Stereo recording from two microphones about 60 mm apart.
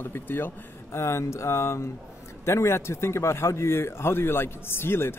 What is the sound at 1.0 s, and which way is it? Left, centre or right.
Speech, left.